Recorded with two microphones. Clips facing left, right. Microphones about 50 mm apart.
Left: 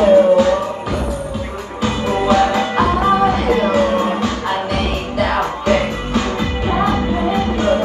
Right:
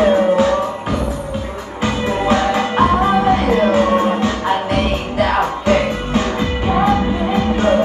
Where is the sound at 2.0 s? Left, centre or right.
Right.